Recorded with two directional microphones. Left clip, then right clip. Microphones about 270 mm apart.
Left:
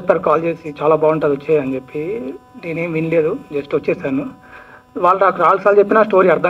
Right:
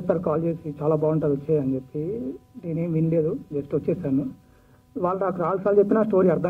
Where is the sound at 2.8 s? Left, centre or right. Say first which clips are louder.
Left 8 dB; centre.